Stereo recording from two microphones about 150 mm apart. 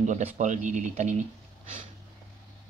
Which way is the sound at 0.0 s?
55° right (ahead or behind).